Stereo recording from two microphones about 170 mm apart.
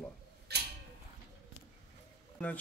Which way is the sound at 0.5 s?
75° right (ahead or behind).